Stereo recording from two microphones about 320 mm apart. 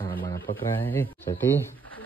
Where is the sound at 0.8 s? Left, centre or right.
Centre.